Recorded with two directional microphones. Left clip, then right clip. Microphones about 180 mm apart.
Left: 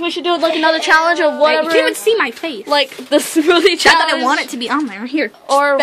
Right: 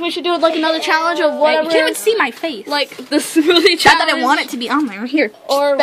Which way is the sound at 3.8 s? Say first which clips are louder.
Even; 10° right (ahead or behind).